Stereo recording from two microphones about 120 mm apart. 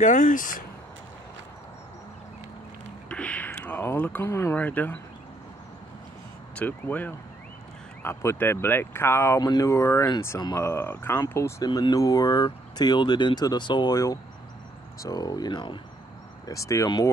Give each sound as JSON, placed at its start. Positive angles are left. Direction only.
{"t": 0.0, "sound": "speech", "side_deg": 90}
{"t": 3.1, "sound": "a sound", "side_deg": 10}
{"t": 4.6, "sound": "speech", "side_deg": 15}
{"t": 6.5, "sound": "speech", "side_deg": 15}
{"t": 16.4, "sound": "speech", "side_deg": 25}